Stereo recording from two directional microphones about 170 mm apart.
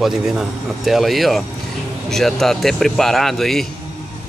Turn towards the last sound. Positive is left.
turn(degrees=0)  # may be behind; listen again after turning